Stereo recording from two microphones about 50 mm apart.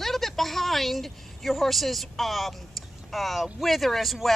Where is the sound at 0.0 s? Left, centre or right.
Centre.